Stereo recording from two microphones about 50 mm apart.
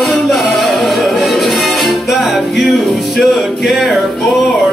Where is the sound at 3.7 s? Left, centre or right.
Right.